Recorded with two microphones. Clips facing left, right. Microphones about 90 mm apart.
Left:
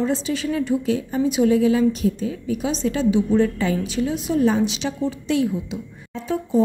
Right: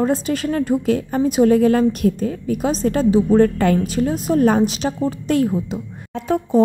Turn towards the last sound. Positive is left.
turn(degrees=-55)  # may be behind; listen again after turning